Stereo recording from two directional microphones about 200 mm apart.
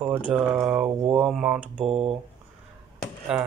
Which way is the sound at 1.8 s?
30° right (ahead or behind).